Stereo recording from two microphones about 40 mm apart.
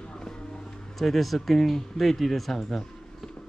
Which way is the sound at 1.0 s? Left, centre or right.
Centre.